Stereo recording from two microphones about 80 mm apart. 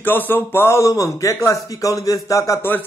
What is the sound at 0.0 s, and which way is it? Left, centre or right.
Speech, left.